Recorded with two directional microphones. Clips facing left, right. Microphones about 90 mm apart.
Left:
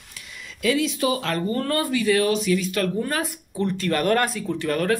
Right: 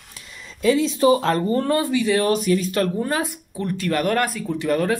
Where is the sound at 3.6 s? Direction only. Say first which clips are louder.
Even; 5° right (ahead or behind).